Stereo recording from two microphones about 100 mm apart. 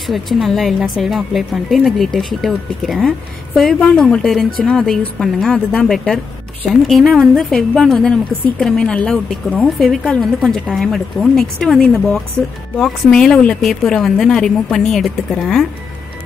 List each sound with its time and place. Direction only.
0.0 s a woman's voice: centre (ahead or behind)